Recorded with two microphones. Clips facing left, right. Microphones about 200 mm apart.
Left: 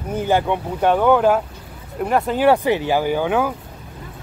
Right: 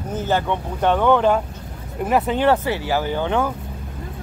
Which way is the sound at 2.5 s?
15° left (ahead or behind).